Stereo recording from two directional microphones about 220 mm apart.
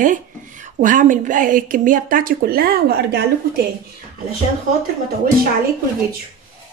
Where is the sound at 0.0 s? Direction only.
35° right (ahead or behind).